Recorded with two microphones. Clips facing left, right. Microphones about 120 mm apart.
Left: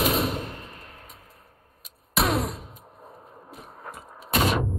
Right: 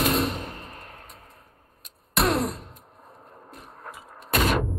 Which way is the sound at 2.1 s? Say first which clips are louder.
Right 1 dB; centre (ahead or behind).